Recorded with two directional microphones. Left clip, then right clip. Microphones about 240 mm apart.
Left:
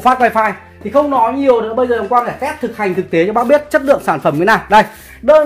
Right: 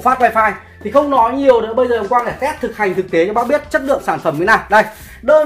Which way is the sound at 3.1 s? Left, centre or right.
Left.